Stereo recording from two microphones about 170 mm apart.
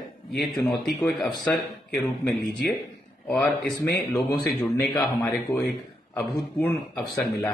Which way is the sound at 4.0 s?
5° left (ahead or behind).